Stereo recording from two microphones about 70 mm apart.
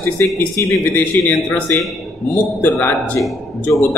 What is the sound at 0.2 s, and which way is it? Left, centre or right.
Speech, left.